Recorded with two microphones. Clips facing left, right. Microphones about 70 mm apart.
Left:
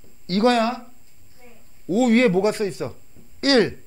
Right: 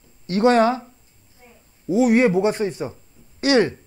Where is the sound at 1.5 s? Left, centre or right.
Centre.